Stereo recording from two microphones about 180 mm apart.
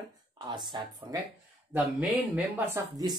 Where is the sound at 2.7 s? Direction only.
20° right (ahead or behind).